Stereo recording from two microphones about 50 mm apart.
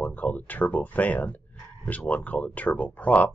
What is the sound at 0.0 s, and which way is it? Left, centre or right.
Speech, left.